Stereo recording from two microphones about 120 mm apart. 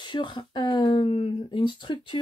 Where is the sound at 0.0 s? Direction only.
40° left (ahead or behind).